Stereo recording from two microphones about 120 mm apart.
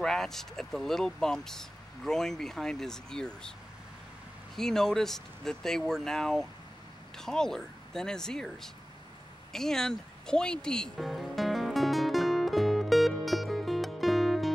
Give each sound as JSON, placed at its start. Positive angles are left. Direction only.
{"t": 0.0, "sound": "speech", "side_deg": 5}
{"t": 4.6, "sound": "speech", "side_deg": 5}
{"t": 9.5, "sound": "music", "side_deg": 5}